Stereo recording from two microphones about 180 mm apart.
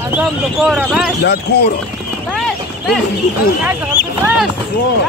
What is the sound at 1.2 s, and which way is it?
Speech, 70° left (ahead or behind).